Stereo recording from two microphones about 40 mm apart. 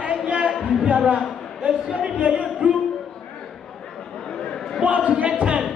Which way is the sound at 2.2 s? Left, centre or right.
Right.